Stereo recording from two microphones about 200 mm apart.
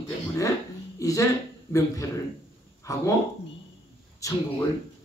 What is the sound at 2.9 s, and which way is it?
Speech, 15° left (ahead or behind).